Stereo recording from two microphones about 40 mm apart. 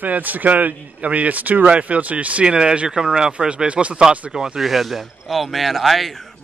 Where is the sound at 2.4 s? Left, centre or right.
Right.